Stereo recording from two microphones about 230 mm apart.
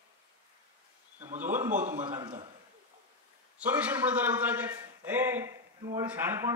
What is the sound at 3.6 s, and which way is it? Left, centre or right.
A man's voice, centre.